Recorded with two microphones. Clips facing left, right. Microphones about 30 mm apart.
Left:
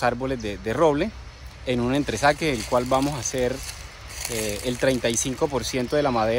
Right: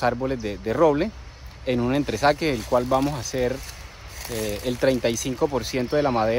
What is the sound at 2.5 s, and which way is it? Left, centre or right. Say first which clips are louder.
Speech: right 1 dB; left.